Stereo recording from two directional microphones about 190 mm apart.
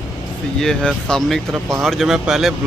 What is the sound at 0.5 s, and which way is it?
A man's voice, 5° left (ahead or behind).